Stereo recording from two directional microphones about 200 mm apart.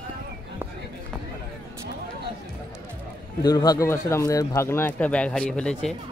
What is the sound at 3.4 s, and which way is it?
Speech, 20° left (ahead or behind).